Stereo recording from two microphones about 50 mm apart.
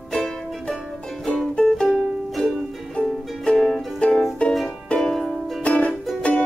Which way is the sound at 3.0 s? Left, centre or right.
Centre.